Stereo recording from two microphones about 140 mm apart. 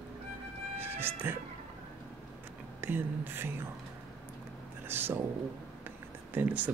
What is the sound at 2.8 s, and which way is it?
Music, 15° right (ahead or behind).